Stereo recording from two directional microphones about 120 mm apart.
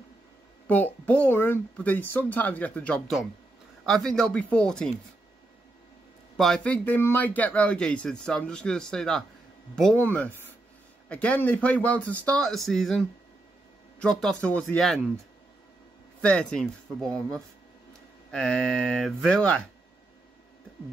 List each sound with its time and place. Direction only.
0.7 s a man's voice: 15° left (ahead or behind)
6.3 s a man's voice: 5° left (ahead or behind)
16.2 s a man's voice: 10° left (ahead or behind)